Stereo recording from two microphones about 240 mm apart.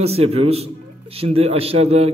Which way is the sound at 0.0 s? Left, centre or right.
Right.